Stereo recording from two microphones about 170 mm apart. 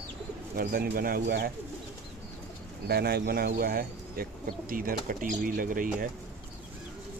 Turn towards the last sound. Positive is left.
turn(degrees=-55)  # may be behind; listen again after turning